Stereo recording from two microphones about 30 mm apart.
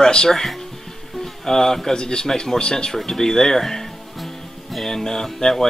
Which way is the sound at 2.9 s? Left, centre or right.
Centre.